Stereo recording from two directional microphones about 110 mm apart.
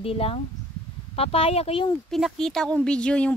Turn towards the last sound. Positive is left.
turn(degrees=10)  # may be behind; listen again after turning